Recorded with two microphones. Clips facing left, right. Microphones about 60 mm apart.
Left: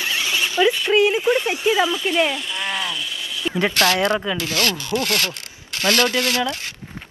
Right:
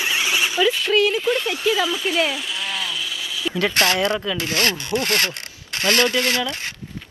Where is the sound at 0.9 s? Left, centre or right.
Left.